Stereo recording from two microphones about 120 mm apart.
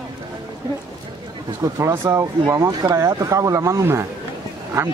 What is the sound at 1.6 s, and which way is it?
Speech, 25° right (ahead or behind).